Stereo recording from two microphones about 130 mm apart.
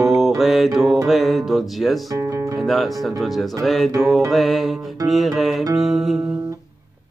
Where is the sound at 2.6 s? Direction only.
Centre (ahead or behind).